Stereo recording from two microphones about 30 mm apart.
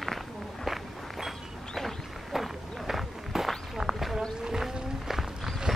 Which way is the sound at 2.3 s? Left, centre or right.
Centre.